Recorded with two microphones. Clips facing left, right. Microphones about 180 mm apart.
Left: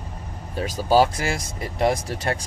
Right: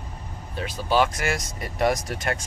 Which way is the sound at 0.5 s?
40° left (ahead or behind).